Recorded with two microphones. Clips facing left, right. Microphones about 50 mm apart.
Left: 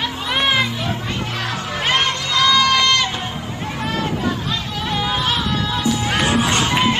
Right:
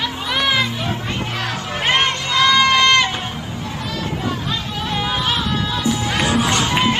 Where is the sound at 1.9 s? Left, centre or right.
Right.